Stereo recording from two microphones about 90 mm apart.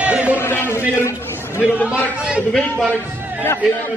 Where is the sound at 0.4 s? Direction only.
25° left (ahead or behind).